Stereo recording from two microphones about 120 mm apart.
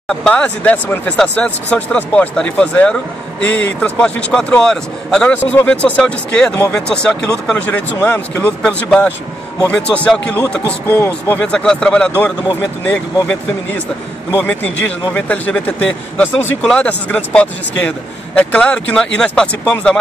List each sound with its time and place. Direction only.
0.1 s speech: 5° left (ahead or behind)